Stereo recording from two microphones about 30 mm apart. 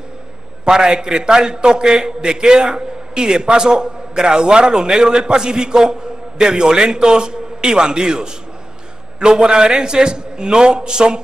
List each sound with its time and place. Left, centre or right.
0.7 s a man's voice: right